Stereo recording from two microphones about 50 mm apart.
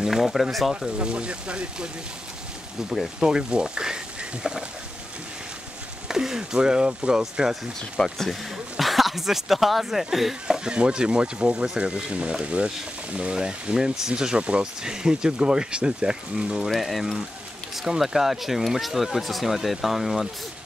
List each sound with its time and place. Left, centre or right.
0.0 s speech: centre
0.9 s speech: right
3.2 s speech: centre
6.0 s speech: centre
8.3 s speech: centre
10.6 s speech: centre
16.6 s speech: centre